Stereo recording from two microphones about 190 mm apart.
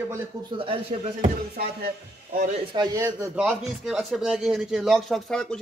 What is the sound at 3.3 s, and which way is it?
A man's voice, 5° right (ahead or behind).